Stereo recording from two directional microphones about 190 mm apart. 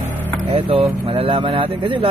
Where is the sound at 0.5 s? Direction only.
30° right (ahead or behind).